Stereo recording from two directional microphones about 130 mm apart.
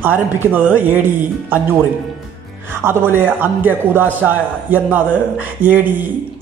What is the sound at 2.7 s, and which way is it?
A man's voice, 20° right (ahead or behind).